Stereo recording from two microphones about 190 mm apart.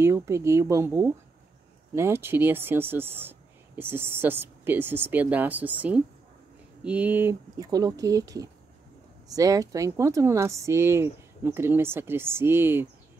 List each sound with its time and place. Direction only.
0.0 s speech: 15° right (ahead or behind)